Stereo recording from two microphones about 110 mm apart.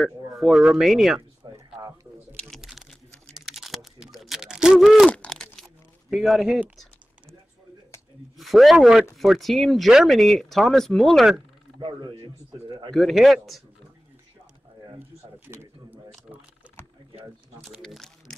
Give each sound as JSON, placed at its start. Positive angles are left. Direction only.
{"t": 0.0, "sound": "speech", "side_deg": 0}
{"t": 1.4, "sound": "a sound", "side_deg": -40}
{"t": 2.6, "sound": "a sound", "side_deg": -5}
{"t": 5.2, "sound": "crumpling", "side_deg": 5}
{"t": 8.4, "sound": "speech", "side_deg": 0}
{"t": 11.8, "sound": "speech", "side_deg": -45}
{"t": 12.9, "sound": "speech", "side_deg": 0}
{"t": 15.0, "sound": "a sound", "side_deg": -20}
{"t": 17.8, "sound": "speech", "side_deg": 5}